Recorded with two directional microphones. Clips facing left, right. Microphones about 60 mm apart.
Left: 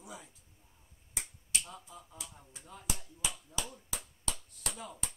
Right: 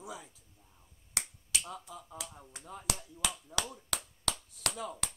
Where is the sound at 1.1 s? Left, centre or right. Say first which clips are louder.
Right 2 dB; right.